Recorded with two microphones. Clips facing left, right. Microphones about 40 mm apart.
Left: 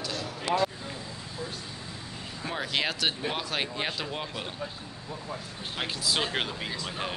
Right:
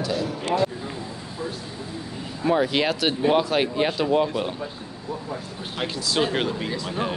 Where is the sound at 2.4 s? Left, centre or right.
Centre.